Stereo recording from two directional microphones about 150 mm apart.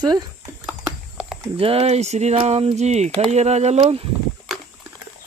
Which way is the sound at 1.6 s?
40° right (ahead or behind).